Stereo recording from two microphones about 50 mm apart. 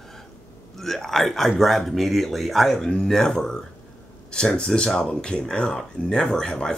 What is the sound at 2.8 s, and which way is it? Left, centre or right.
Speech, centre.